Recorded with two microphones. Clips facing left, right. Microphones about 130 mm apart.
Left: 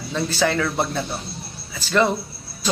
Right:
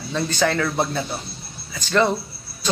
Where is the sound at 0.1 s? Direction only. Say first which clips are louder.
Even; centre (ahead or behind).